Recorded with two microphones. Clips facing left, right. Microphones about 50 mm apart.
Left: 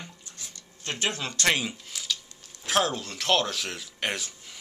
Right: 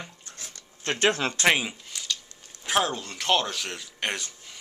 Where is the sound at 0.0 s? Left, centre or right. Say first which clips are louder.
Right 2 dB; right.